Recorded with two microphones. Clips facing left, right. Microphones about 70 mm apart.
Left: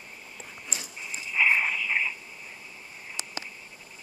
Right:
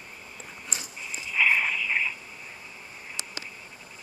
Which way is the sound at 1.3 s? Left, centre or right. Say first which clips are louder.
Even; centre.